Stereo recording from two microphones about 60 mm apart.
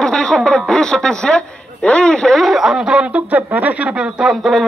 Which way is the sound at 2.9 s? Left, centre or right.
Right.